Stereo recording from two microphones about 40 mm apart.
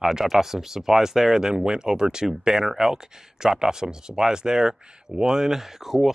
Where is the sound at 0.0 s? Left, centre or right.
Centre.